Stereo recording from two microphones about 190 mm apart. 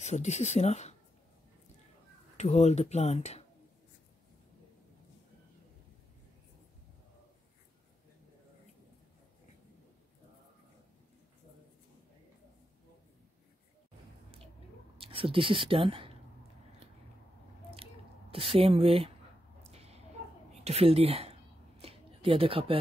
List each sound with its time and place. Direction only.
0.0 s speech: 35° left (ahead or behind)
2.3 s speech: 35° left (ahead or behind)
15.0 s speech: 30° right (ahead or behind)
18.3 s speech: 30° right (ahead or behind)
19.6 s a sound: 35° right (ahead or behind)
20.6 s a woman's voice: 30° right (ahead or behind)
21.8 s a sound: 30° right (ahead or behind)